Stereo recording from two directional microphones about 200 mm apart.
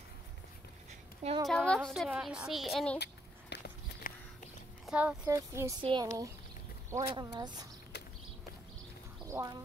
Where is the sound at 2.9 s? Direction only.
55° left (ahead or behind).